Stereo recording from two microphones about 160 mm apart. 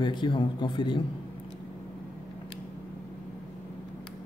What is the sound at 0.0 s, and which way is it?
A man's voice, 30° left (ahead or behind).